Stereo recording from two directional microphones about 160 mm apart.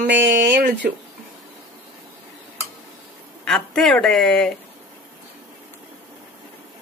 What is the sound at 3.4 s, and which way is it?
Speech, centre (ahead or behind).